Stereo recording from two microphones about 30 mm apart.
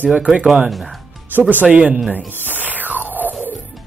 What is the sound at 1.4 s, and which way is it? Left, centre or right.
Speech, right.